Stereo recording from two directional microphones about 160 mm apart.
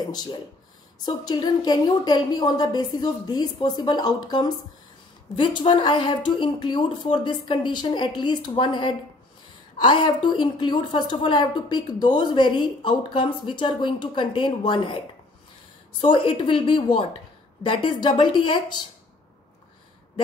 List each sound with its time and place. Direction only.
0.1 s a woman's voice: 25° left (ahead or behind)
16.0 s a woman's voice: 30° left (ahead or behind)